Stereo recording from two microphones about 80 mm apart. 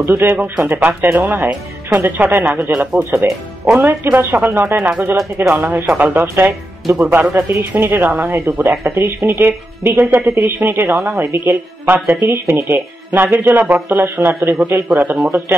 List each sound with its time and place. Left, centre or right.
0.0 s speech: right